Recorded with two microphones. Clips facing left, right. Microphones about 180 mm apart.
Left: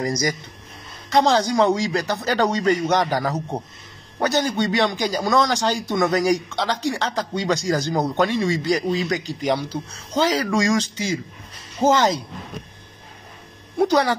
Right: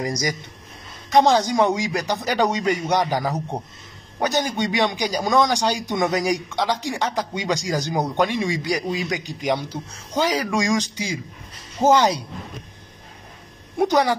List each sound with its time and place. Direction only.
0.0 s speech: 15° right (ahead or behind)
13.7 s speech: 15° right (ahead or behind)